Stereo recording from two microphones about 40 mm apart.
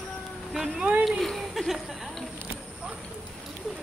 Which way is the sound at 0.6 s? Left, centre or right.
Centre.